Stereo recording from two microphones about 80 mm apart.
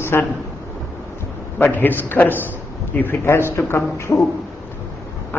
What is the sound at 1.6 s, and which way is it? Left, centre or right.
A man's voice, left.